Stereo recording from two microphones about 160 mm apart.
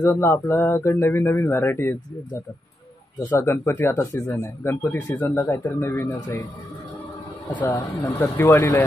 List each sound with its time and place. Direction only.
0.0 s speech: 15° left (ahead or behind)
3.3 s speech: 15° left (ahead or behind)
7.4 s speech: 15° left (ahead or behind)